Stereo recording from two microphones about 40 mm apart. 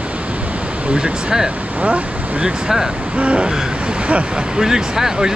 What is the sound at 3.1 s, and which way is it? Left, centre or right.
Speech, right.